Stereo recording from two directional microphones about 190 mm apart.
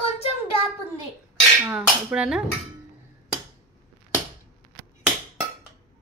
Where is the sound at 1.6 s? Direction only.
5° right (ahead or behind).